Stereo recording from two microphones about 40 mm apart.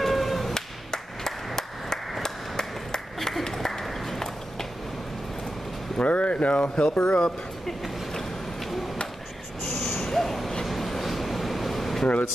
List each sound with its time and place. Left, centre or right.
0.0 s music: centre
0.9 s clapping: centre
2.2 s a sound: centre
5.9 s speech: left
8.1 s a sound: centre
9.8 s owl: centre
10.6 s air conditioning: centre